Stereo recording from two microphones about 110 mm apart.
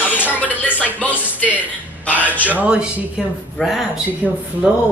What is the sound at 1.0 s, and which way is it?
Speech, 15° right (ahead or behind).